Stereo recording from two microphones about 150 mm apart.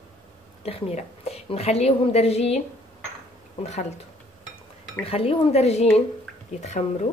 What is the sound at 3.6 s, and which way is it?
Speech, 50° left (ahead or behind).